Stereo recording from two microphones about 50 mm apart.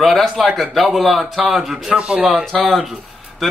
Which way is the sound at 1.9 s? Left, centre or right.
Centre.